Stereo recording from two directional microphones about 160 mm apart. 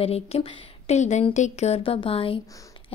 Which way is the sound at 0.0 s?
40° left (ahead or behind).